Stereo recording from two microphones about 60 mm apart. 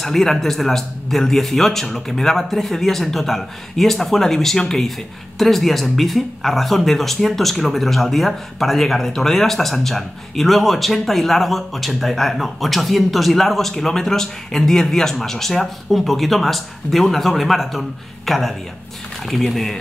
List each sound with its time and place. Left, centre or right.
0.0 s speech: centre